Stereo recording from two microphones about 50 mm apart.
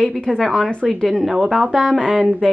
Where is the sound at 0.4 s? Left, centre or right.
Centre.